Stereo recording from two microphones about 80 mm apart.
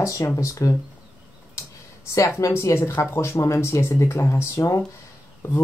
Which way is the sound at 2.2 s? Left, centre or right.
Left.